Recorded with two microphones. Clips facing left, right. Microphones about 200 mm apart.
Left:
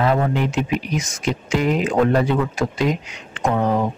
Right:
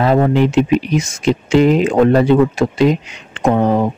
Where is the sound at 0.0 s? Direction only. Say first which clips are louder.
Right 6 dB; 30° right (ahead or behind).